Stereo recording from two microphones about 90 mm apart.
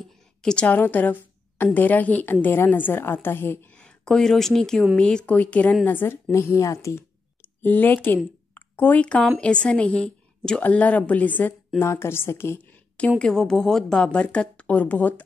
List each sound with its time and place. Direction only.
0.4 s a woman's voice: 5° left (ahead or behind)
0.7 s a woman's voice: 20° left (ahead or behind)
3.7 s a woman's voice: 10° left (ahead or behind); by 7.1 s 30° left (ahead or behind)
7.6 s a woman's voice: 20° left (ahead or behind)
11.8 s a woman's voice: 25° left (ahead or behind)
13.2 s a woman's voice: 5° left (ahead or behind)